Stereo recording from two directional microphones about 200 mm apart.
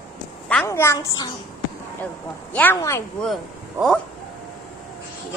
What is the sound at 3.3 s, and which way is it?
Speech, centre (ahead or behind).